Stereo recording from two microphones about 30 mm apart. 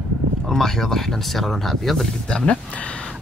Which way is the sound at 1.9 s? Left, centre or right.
Centre.